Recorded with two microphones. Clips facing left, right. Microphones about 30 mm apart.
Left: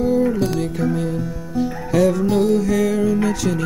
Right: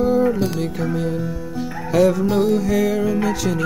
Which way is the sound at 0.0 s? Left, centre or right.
Centre.